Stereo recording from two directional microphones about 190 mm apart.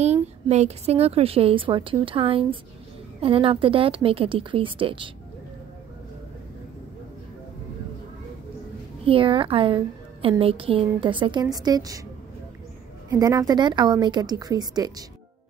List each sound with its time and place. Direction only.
0.0 s a woman's voice: 35° right (ahead or behind)
9.0 s a woman's voice: 25° right (ahead or behind)
13.1 s a woman's voice: 15° right (ahead or behind)